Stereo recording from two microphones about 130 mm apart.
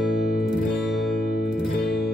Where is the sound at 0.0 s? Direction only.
Centre (ahead or behind).